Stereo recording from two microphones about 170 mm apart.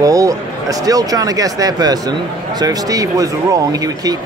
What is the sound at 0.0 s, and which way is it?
Speech, 20° right (ahead or behind).